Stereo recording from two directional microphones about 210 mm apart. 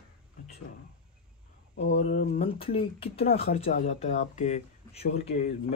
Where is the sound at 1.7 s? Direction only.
50° left (ahead or behind).